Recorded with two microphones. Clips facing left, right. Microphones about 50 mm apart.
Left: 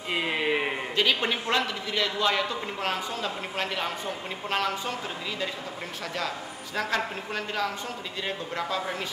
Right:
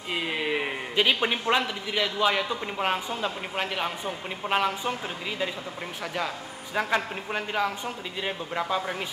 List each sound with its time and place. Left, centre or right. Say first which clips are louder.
0.1 s a sound: left 2 dB; centre
0.9 s a man's voice: right 2 dB; centre
6.1 s a man's voice: right 1 dB; centre